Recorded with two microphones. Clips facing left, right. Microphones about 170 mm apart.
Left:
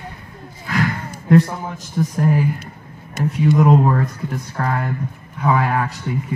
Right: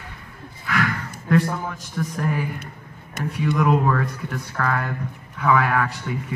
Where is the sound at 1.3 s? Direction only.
25° left (ahead or behind).